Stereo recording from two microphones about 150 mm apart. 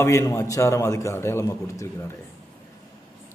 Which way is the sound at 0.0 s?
20° left (ahead or behind).